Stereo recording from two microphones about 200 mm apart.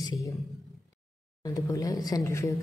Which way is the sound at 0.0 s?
15° left (ahead or behind).